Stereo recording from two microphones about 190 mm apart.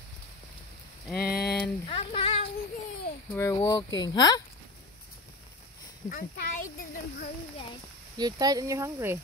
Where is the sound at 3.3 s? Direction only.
15° left (ahead or behind).